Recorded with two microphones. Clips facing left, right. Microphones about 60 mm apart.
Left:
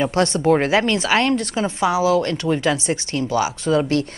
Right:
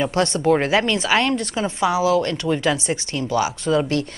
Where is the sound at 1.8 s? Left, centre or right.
Left.